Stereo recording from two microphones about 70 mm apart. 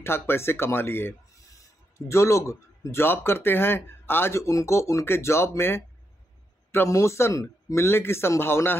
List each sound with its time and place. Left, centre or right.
0.0 s speech: left
1.5 s a sound: left
3.0 s speech: left
6.9 s speech: left